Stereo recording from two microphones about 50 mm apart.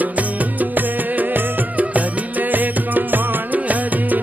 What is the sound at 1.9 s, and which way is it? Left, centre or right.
Music, right.